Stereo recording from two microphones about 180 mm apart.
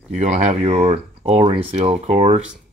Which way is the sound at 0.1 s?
40° right (ahead or behind).